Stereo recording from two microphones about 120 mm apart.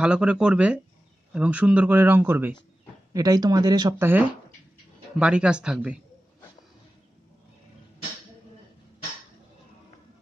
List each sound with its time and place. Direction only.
0.0 s speech: 10° right (ahead or behind)
3.1 s speech: 30° right (ahead or behind)
4.0 s speech: 15° right (ahead or behind)